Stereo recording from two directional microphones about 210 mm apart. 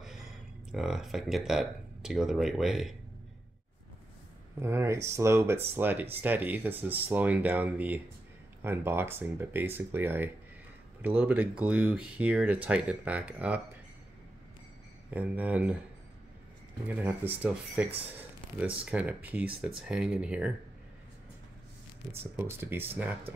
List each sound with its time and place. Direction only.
0.0 s speech: centre (ahead or behind)
4.6 s speech: 10° right (ahead or behind)
15.1 s speech: 5° right (ahead or behind)
16.8 s speech: 10° right (ahead or behind)
22.4 s speech: 10° right (ahead or behind)